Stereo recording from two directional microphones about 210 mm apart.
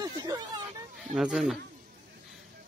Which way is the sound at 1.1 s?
Centre (ahead or behind).